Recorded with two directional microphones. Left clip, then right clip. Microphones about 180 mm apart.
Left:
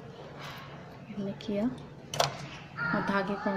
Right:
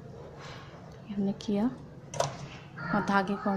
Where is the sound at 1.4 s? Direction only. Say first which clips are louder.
Even; 35° right (ahead or behind).